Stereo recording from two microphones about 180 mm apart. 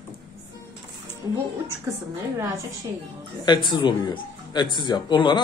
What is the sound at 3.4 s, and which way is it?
A man's voice, 25° left (ahead or behind).